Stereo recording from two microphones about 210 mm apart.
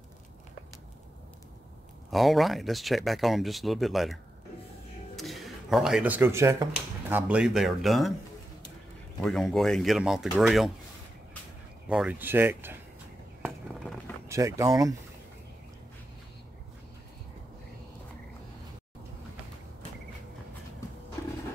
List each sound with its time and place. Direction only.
2.0 s speech: centre (ahead or behind)
9.2 s speech: centre (ahead or behind)
11.9 s speech: 5° right (ahead or behind)
13.4 s a sound: centre (ahead or behind)
14.2 s speech: 15° right (ahead or behind)